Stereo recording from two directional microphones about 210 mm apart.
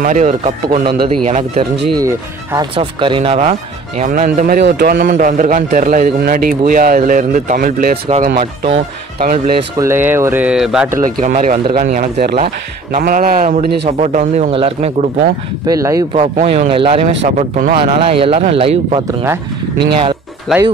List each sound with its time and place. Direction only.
0.0 s a man's voice: 35° right (ahead or behind)
2.0 s a man's voice: 15° right (ahead or behind); by 4.6 s 40° right (ahead or behind)
4.6 s a man's voice: 55° right (ahead or behind)
8.4 s speech: 25° right (ahead or behind)
9.8 s speech: 10° right (ahead or behind)
11.0 s a man's voice: 40° right (ahead or behind)
13.8 s a man's voice: 35° right (ahead or behind)
15.6 s speech: 15° right (ahead or behind)
16.1 s a man's voice: 30° right (ahead or behind)
17.9 s speech: 25° right (ahead or behind)
20.5 s speech: centre (ahead or behind)